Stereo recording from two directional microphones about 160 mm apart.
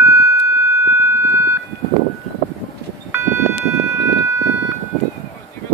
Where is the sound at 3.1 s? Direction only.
15° right (ahead or behind).